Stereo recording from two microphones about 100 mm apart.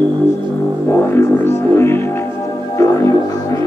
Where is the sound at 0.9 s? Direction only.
25° left (ahead or behind).